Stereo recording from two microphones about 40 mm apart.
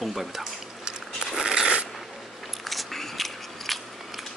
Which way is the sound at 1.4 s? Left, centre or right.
Centre.